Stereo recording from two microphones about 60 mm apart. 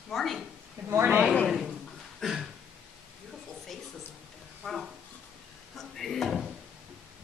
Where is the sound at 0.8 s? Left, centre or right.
Right.